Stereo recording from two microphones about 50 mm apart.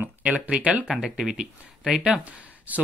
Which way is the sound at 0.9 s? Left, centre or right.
Centre.